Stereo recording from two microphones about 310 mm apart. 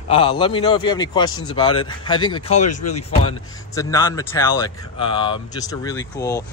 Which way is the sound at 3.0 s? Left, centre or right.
Centre.